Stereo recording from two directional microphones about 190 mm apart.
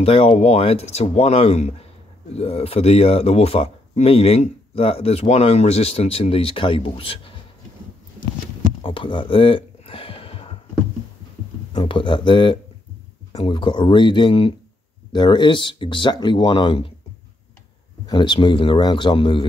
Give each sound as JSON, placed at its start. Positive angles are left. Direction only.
{"t": 0.0, "sound": "speech", "side_deg": 30}
{"t": 8.8, "sound": "a sound", "side_deg": 25}
{"t": 11.7, "sound": "speech", "side_deg": 25}
{"t": 18.0, "sound": "speech", "side_deg": 25}